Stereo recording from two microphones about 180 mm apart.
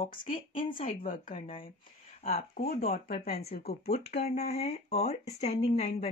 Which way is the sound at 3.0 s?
55° left (ahead or behind).